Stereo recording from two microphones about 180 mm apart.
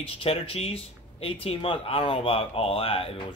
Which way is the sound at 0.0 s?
30° left (ahead or behind).